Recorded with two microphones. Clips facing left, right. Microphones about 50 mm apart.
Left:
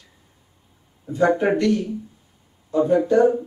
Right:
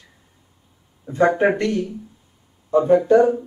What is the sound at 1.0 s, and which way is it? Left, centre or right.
Speech, right.